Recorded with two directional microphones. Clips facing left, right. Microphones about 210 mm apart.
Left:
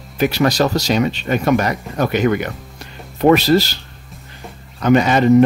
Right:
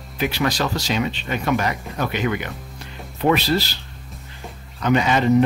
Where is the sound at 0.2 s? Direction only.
45° left (ahead or behind).